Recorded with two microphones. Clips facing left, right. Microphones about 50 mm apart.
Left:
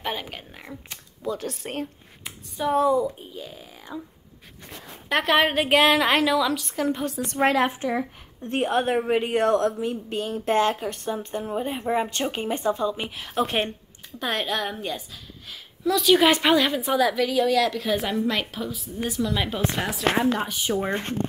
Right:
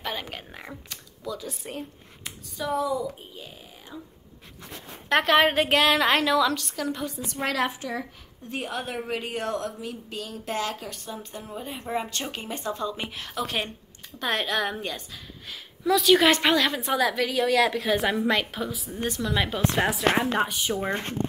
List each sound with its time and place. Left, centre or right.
0.2 s a sound: centre
0.8 s a sound: left
1.4 s speech: left
2.7 s speech: left
3.9 s speech: left
5.1 s a woman's voice: centre
6.7 s a woman's voice: left
8.5 s speech: left
12.7 s a woman's voice: centre
13.3 s a woman's voice: left
14.2 s a woman's voice: centre